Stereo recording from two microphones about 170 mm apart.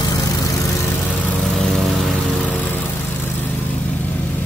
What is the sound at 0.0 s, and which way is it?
Vehicle, 20° left (ahead or behind).